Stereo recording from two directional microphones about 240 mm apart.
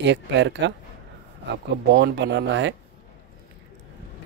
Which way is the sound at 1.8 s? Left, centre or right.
Right.